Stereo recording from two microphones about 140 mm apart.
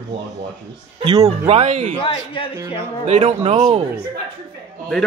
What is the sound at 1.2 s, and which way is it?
Speech, 50° right (ahead or behind).